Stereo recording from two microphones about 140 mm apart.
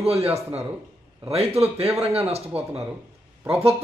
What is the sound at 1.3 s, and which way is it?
Speech, 45° right (ahead or behind).